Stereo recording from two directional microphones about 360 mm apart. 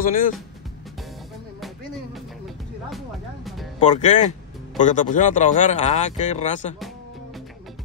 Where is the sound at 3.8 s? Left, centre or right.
Centre.